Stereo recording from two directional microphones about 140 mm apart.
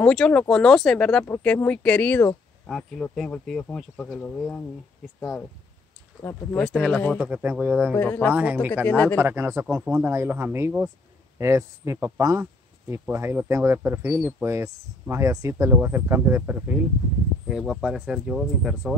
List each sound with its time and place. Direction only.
0.0 s speech: 5° left (ahead or behind)
6.5 s speech: 5° left (ahead or behind)
7.2 s speech: 10° right (ahead or behind)
7.9 s speech: 15° left (ahead or behind)
8.4 s speech: 10° right (ahead or behind)
8.8 s speech: 10° left (ahead or behind)
9.2 s speech: 20° right (ahead or behind); by 18.9 s centre (ahead or behind)